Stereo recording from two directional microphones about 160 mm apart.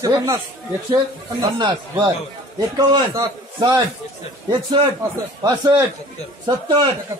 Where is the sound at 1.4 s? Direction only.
25° right (ahead or behind).